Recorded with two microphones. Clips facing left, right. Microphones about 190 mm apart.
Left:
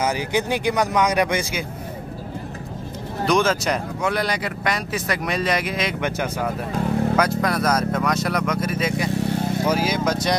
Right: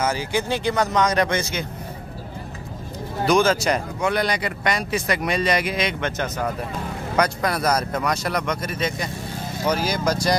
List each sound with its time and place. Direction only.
0.0 s speech: 15° left (ahead or behind)
3.3 s speech: centre (ahead or behind)
5.9 s speech: 10° left (ahead or behind)